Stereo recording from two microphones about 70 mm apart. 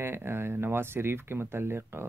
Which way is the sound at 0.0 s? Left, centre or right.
Right.